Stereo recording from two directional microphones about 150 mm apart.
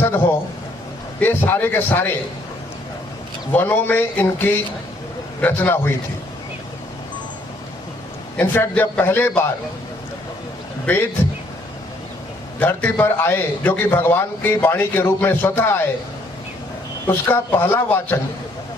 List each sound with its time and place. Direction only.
1.2 s a man's voice: 15° left (ahead or behind)
3.5 s a man's voice: 10° left (ahead or behind)
8.4 s a man's voice: 10° left (ahead or behind)
10.9 s a man's voice: 10° left (ahead or behind)
12.5 s a man's voice: 10° left (ahead or behind)
17.0 s a man's voice: 15° left (ahead or behind)